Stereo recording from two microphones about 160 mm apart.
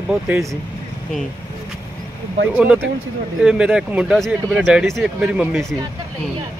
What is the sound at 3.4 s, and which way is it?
Speech, 5° right (ahead or behind).